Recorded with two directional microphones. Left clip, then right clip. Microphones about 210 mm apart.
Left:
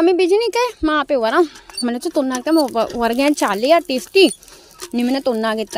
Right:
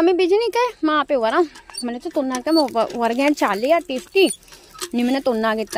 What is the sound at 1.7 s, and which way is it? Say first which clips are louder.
Speech: left 4 dB; 25° left (ahead or behind).